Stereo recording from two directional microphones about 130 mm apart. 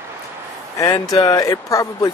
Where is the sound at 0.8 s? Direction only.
30° left (ahead or behind).